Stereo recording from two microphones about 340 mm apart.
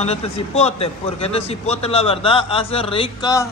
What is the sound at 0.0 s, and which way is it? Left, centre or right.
A man's voice, centre.